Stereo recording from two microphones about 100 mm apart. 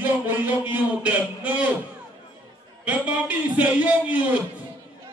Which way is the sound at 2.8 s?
15° right (ahead or behind).